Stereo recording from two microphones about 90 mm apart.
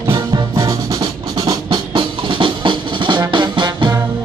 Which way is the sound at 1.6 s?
65° right (ahead or behind).